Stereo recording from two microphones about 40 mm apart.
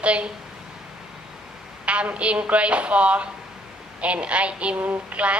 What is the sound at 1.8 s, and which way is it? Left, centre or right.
A woman's voice, right.